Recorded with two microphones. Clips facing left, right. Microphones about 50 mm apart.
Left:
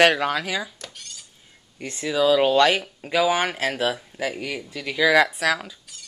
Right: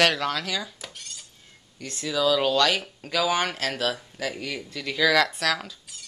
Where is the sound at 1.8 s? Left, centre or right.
Left.